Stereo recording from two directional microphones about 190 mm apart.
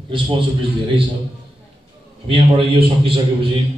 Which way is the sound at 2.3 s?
30° right (ahead or behind).